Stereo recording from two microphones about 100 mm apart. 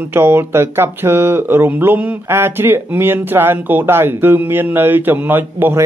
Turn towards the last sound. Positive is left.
turn(degrees=-20)  # may be behind; listen again after turning